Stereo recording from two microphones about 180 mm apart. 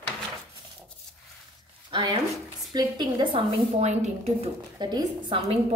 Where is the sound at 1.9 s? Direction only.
25° right (ahead or behind).